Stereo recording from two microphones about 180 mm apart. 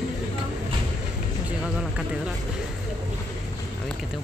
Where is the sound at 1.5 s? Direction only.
5° right (ahead or behind).